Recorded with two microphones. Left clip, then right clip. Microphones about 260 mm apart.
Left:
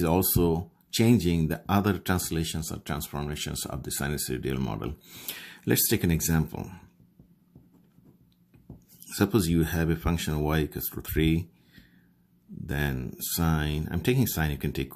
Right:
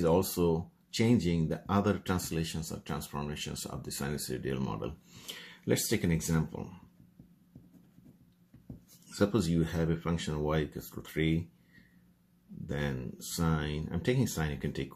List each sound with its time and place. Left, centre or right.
0.0 s speech: left
9.1 s speech: left
12.6 s speech: left